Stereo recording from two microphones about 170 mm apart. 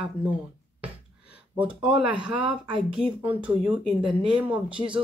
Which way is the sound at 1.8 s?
5° right (ahead or behind).